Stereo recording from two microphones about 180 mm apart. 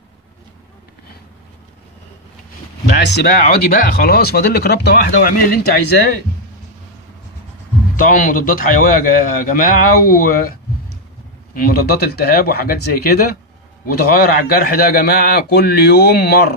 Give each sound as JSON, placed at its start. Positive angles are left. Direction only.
{"t": 2.9, "sound": "speech", "side_deg": 65}
{"t": 7.9, "sound": "a man's voice", "side_deg": 50}
{"t": 11.5, "sound": "speech", "side_deg": 55}